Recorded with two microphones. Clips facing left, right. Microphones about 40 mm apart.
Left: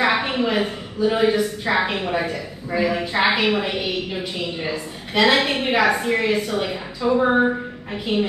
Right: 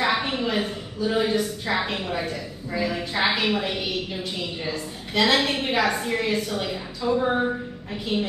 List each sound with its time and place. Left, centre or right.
0.2 s a woman's voice: left